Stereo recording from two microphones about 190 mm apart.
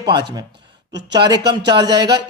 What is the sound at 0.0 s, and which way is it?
Speech, 20° right (ahead or behind).